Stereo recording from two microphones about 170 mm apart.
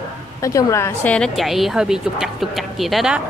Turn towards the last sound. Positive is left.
turn(degrees=0)  # may be behind; listen again after turning